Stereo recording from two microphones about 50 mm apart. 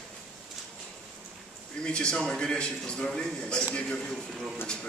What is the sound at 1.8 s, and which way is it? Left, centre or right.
A man's voice, centre.